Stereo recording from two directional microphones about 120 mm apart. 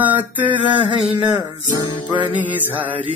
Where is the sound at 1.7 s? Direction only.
40° left (ahead or behind).